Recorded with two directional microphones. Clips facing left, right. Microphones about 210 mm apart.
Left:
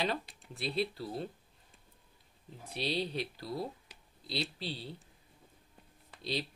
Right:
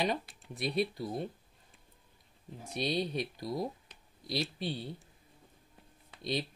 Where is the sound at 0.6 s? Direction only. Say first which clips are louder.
Right 2 dB; 15° right (ahead or behind).